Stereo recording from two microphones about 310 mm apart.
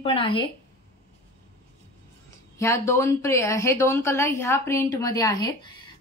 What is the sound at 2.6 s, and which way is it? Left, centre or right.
A woman's voice, centre.